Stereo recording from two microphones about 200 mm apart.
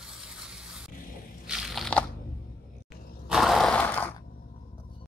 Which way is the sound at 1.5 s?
Centre (ahead or behind).